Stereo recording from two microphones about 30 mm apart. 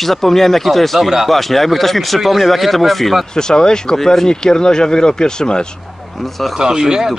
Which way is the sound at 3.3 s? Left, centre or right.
Left.